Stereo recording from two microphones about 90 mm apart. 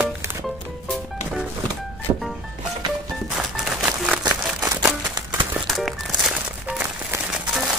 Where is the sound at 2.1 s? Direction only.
60° right (ahead or behind).